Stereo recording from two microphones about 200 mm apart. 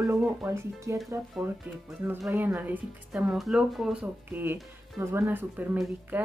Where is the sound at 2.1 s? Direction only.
10° right (ahead or behind).